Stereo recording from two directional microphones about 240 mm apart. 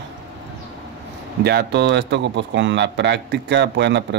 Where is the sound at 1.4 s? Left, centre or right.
Right.